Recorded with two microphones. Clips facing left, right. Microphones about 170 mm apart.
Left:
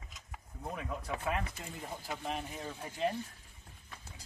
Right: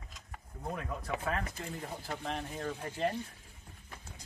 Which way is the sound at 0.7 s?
Centre (ahead or behind).